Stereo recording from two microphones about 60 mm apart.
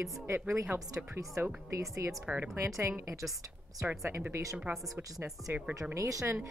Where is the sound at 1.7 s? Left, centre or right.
Right.